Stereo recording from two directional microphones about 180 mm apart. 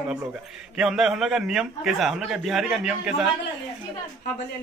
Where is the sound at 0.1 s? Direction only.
5° right (ahead or behind).